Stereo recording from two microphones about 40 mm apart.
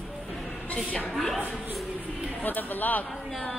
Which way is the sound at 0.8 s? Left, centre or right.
Left.